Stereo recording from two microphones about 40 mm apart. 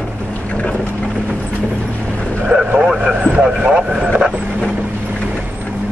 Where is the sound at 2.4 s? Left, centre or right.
Right.